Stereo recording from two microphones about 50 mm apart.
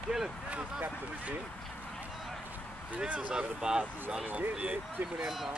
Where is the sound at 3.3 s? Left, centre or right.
Centre.